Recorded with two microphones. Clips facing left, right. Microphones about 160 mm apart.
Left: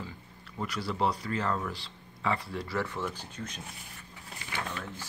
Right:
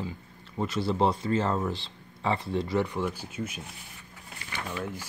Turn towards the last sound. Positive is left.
turn(degrees=-10)  # may be behind; listen again after turning